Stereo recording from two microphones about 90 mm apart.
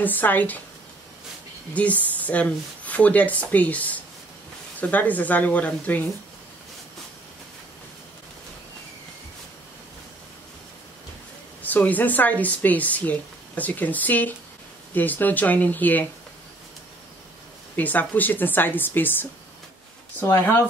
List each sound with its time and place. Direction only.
0.0 s speech: 20° left (ahead or behind)
1.7 s speech: 15° left (ahead or behind)
11.6 s speech: 20° left (ahead or behind)
17.7 s speech: 20° left (ahead or behind)
20.2 s speech: 25° left (ahead or behind)